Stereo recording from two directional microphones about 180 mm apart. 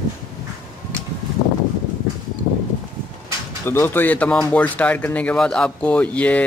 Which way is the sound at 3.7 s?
10° left (ahead or behind).